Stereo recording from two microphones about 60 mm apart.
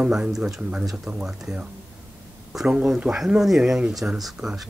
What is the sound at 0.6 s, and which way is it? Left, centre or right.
Speech, centre.